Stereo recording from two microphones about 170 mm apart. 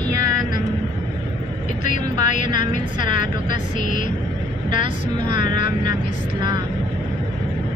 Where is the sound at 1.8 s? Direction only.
50° left (ahead or behind).